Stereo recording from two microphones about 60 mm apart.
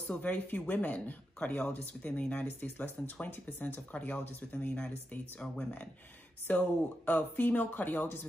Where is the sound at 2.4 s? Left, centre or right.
Left.